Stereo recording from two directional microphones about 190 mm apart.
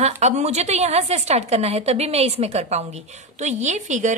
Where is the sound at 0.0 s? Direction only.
35° right (ahead or behind).